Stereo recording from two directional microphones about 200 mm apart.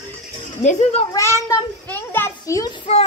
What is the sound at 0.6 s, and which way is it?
Speech, 35° left (ahead or behind).